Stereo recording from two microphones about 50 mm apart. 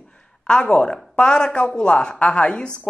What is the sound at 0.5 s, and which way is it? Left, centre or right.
A woman's voice, centre.